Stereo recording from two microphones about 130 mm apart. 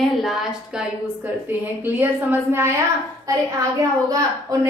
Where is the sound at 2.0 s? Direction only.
15° right (ahead or behind).